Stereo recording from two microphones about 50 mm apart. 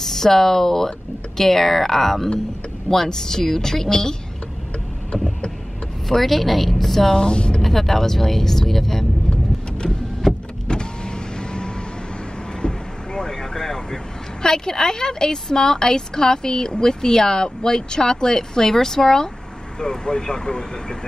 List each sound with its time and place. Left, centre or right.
0.0 s a woman's voice: centre
6.0 s speech: centre
7.2 s speech: centre
7.6 s speech: centre
9.8 s vehicle: centre
10.7 s power windows: centre
12.6 s vehicle: centre
14.4 s a woman's voice: centre